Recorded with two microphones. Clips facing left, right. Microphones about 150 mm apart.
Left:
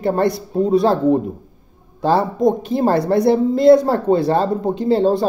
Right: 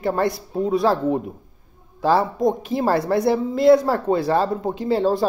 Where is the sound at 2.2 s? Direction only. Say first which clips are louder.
Left 4 dB; centre (ahead or behind).